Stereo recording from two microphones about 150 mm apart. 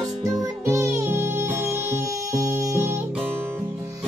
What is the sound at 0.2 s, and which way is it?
Music, 20° right (ahead or behind).